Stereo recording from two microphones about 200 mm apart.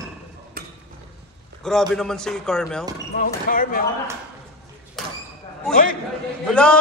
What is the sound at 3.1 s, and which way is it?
Speech, 45° left (ahead or behind).